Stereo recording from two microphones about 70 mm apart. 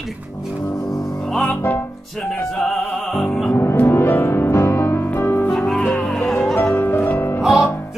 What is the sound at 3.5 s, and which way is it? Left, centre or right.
Music, left.